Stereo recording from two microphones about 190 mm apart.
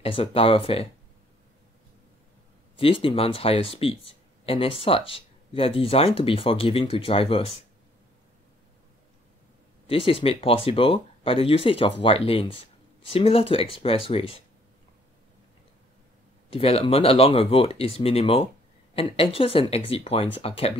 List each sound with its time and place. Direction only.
0.0 s speech: 30° left (ahead or behind)
2.8 s speech: 30° left (ahead or behind)
9.8 s speech: 30° left (ahead or behind)
16.5 s speech: 30° left (ahead or behind)